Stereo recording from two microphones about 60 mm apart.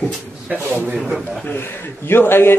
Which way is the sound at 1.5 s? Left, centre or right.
Left.